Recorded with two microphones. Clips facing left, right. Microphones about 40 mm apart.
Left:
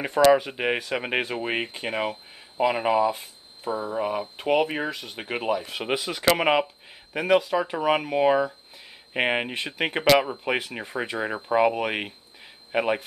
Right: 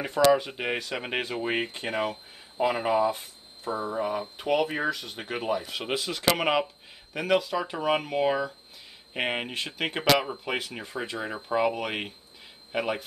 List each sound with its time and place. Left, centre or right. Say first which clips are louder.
0.0 s speech: left 3 dB; centre
3.7 s speech: left 2 dB; centre
4.5 s speech: left 2 dB; left
5.5 s speech: left 3 dB; centre
5.8 s speech: left 3 dB; centre